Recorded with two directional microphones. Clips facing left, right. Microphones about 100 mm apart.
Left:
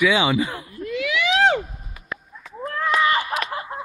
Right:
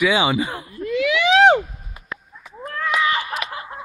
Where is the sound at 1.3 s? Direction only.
80° right.